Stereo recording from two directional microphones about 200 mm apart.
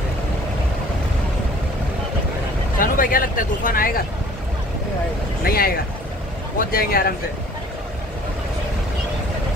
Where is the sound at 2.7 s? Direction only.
45° left (ahead or behind).